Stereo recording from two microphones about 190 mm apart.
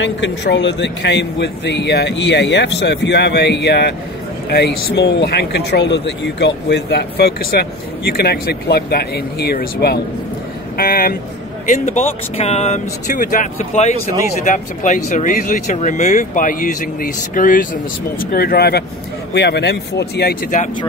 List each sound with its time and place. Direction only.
0.0 s speech: 70° left (ahead or behind); by 11.1 s 50° left (ahead or behind)
11.7 s speech: 40° left (ahead or behind); by 20.3 s 60° left (ahead or behind)